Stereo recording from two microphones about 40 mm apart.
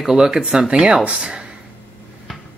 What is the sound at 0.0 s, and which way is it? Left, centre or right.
Speech, centre.